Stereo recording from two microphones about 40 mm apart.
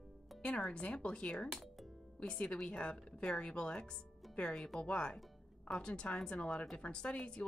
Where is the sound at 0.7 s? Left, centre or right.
Left.